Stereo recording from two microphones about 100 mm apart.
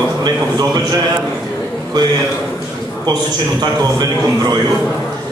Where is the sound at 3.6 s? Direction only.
45° right (ahead or behind).